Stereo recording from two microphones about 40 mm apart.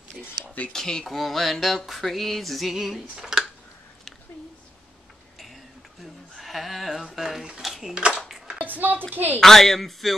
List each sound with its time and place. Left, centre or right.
0.7 s speech: centre
1.0 s music: centre
6.3 s a sound: centre
7.6 s dishes: centre
7.9 s speech: right
8.5 s a sound: right
9.1 s a woman's voice: right
9.4 s music: centre